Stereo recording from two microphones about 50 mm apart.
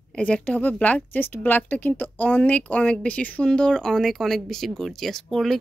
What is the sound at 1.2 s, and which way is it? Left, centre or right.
Speech, left.